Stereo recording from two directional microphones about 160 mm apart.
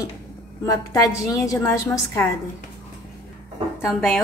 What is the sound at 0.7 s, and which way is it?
A woman's voice, 20° left (ahead or behind).